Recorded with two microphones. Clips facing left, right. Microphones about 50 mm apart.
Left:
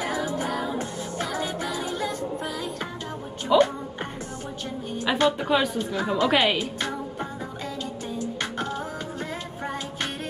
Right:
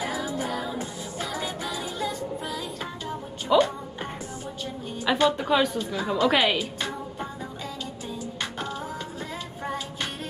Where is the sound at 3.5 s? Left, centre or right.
Centre.